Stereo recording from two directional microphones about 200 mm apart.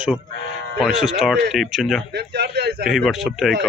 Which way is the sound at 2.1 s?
55° right (ahead or behind).